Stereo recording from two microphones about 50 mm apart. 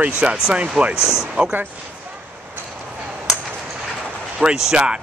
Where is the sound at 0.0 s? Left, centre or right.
Right.